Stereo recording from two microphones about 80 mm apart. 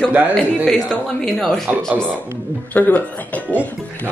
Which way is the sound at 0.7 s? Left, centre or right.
Centre.